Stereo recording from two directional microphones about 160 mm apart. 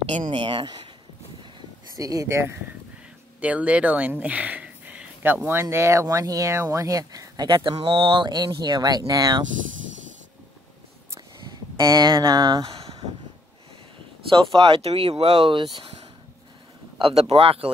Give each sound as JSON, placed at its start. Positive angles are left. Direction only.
{"t": 0.1, "sound": "a woman's voice", "side_deg": -45}
{"t": 0.4, "sound": "speech", "side_deg": -30}
{"t": 2.0, "sound": "speech", "side_deg": -20}
{"t": 11.4, "sound": "a sound", "side_deg": -25}
{"t": 14.3, "sound": "speech", "side_deg": -35}
{"t": 15.8, "sound": "a sound", "side_deg": -40}
{"t": 17.0, "sound": "speech", "side_deg": -35}